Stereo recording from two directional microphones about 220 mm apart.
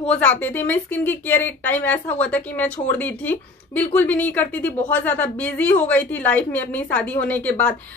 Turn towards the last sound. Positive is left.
turn(degrees=5)  # may be behind; listen again after turning